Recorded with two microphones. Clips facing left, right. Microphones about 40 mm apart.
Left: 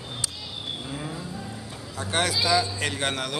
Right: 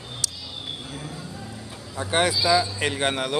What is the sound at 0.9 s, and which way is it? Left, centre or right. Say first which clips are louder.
Vehicle: left 2 dB; centre.